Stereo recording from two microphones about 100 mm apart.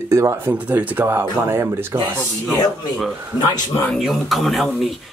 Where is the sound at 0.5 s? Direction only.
15° right (ahead or behind).